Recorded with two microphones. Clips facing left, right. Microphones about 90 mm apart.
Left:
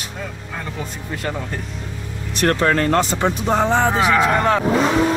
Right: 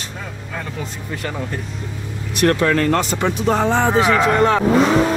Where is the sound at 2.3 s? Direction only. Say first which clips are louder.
Right 1 dB; 35° left (ahead or behind).